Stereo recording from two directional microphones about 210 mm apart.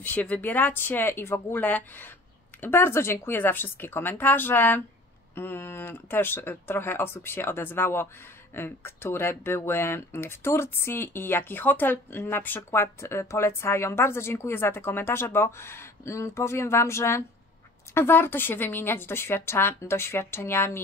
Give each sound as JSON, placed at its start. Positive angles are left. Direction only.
{"t": 0.0, "sound": "speech", "side_deg": 5}